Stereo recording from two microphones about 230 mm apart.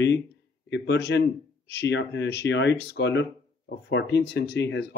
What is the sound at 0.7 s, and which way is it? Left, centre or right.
Speech, left.